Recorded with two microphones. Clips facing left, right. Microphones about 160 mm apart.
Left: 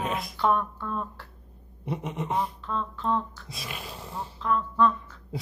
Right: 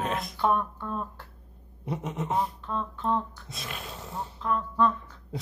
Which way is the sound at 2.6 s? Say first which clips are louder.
Left 1 dB; 15° right (ahead or behind).